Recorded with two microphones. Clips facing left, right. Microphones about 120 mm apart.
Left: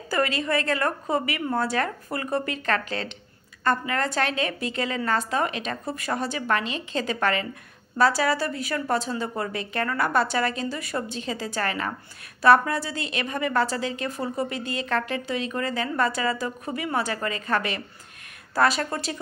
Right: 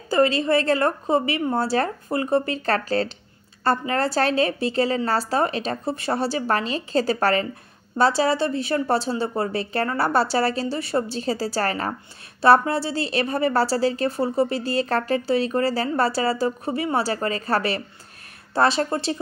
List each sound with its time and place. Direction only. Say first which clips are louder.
0.1 s a woman's voice: right 6 dB; 30° right (ahead or behind)